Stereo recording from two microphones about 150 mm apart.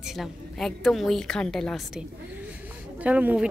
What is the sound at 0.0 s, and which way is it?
A woman's voice, centre (ahead or behind).